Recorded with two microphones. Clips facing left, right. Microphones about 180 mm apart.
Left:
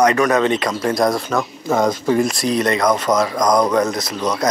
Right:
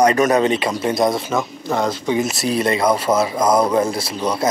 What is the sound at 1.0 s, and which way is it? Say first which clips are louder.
Speech: left 1 dB; centre (ahead or behind).